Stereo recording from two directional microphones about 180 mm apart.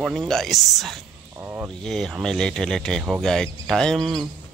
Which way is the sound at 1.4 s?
10° right (ahead or behind).